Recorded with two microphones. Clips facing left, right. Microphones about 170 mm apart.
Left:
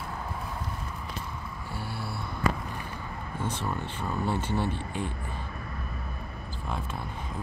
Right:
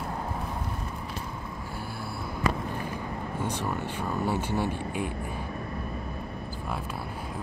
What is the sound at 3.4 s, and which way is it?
Speech, 10° right (ahead or behind).